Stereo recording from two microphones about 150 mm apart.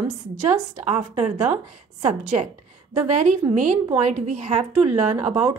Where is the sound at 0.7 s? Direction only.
45° right (ahead or behind).